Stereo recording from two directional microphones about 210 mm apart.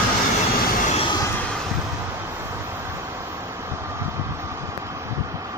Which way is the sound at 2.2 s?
10° right (ahead or behind).